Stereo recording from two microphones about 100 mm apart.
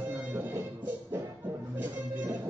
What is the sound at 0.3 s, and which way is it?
Music, 20° right (ahead or behind).